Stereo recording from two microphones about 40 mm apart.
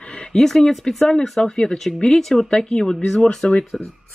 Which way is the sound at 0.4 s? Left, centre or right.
Centre.